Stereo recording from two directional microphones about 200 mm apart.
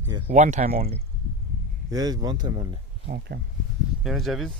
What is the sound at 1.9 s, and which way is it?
Speech, 20° right (ahead or behind).